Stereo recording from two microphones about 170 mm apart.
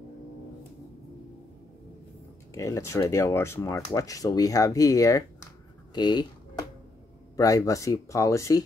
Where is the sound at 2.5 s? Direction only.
20° left (ahead or behind).